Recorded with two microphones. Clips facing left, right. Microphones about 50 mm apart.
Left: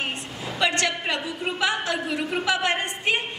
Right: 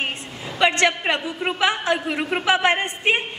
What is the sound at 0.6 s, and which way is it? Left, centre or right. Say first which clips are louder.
A woman's voice: right 6 dB; right.